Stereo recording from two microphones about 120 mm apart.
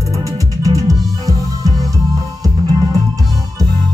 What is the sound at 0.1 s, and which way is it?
Music, 30° right (ahead or behind).